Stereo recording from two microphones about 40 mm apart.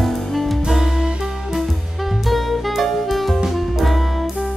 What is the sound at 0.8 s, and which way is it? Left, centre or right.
Music, centre.